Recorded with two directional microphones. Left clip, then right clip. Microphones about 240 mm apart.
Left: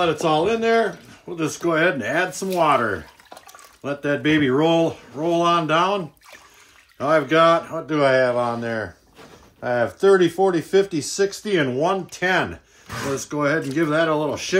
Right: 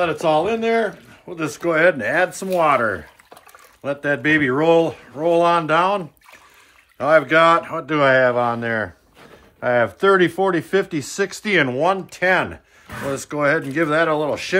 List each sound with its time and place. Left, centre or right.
0.0 s speech: centre; by 7.8 s right
7.9 s speech: right
11.9 s speech: centre